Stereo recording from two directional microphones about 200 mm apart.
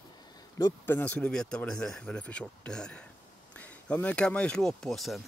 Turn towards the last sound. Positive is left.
turn(degrees=0)  # may be behind; listen again after turning